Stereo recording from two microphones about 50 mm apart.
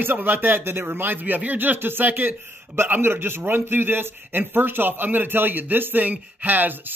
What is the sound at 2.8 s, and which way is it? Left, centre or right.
A man's voice, right.